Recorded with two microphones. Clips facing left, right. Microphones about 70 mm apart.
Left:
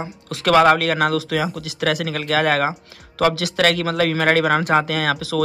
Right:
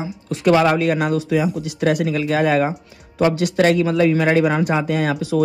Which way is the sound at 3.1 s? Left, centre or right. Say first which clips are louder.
Right 2 dB; left.